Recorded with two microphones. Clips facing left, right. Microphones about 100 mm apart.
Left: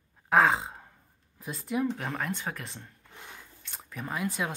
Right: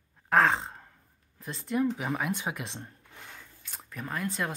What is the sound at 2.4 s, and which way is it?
Speech, 15° right (ahead or behind).